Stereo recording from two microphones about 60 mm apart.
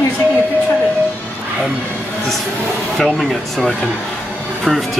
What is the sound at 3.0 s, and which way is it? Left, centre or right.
Speech, centre.